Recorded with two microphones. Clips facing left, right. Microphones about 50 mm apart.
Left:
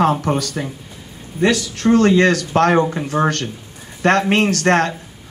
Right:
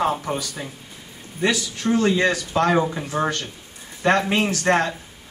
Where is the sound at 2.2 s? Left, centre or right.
Left.